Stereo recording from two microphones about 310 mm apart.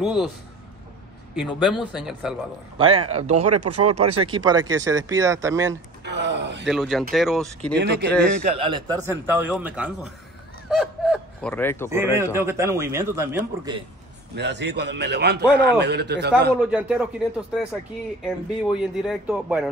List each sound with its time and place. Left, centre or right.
0.0 s speech: centre
1.3 s speech: centre
2.8 s speech: centre
3.3 s speech: right
4.2 s speech: centre
6.0 s a sound: right
6.6 s speech: centre
7.8 s a man's voice: right
8.5 s speech: centre
10.8 s snicker: centre
11.9 s speech: centre
14.3 s a man's voice: right
16.6 s speech: centre
18.2 s speech: centre